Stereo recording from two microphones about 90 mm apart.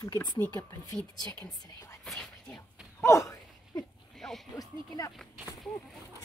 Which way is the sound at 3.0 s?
35° left (ahead or behind).